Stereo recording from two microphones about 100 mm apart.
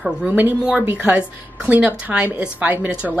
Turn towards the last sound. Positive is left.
turn(degrees=-15)  # may be behind; listen again after turning